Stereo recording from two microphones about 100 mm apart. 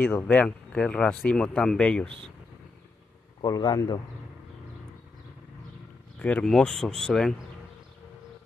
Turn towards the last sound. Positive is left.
turn(degrees=5)  # may be behind; listen again after turning